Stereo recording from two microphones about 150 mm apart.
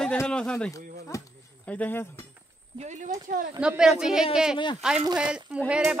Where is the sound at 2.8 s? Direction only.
50° right (ahead or behind).